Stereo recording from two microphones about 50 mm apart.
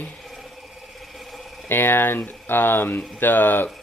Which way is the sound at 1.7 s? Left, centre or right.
Left.